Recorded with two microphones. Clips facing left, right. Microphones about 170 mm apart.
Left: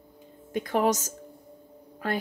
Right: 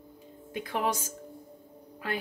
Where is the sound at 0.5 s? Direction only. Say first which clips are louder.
Left 6 dB; 45° left (ahead or behind).